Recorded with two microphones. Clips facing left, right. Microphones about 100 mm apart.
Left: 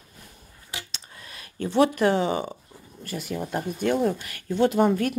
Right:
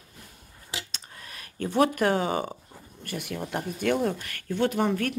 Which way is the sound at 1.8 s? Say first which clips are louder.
Left 3 dB; 45° right (ahead or behind).